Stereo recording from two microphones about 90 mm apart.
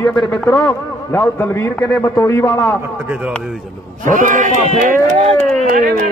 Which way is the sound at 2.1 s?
40° left (ahead or behind).